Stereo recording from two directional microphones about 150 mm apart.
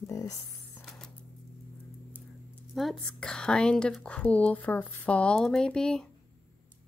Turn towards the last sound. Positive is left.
turn(degrees=5)  # may be behind; listen again after turning